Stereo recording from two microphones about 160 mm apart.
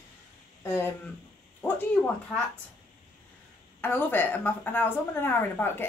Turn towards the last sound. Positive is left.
turn(degrees=15)  # may be behind; listen again after turning